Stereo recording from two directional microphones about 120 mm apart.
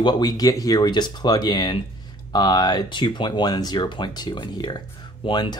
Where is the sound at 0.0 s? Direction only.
30° left (ahead or behind).